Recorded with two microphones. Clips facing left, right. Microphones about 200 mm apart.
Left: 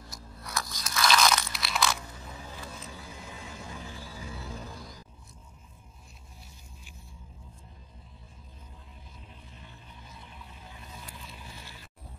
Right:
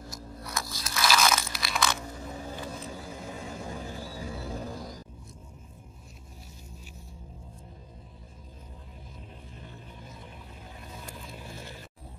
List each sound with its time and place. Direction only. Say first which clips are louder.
0.1 s crunch: even; centre (ahead or behind)
2.5 s vehicle: right 6 dB; 40° right (ahead or behind)
11.1 s vehicle: right 4 dB; 45° right (ahead or behind)